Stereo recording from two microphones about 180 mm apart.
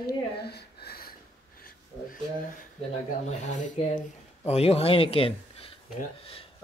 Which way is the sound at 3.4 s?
45° left (ahead or behind).